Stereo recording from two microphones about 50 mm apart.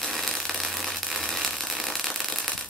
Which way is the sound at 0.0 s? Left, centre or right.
Centre.